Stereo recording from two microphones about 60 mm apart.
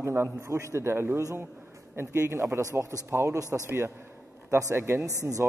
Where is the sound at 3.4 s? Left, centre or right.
Right.